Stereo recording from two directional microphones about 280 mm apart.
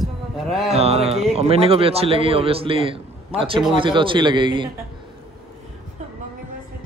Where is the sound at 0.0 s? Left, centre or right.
Centre.